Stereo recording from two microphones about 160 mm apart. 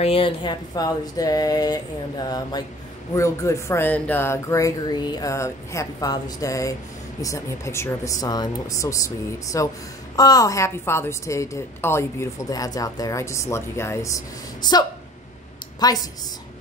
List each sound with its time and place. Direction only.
0.0 s a woman's voice: 35° left (ahead or behind)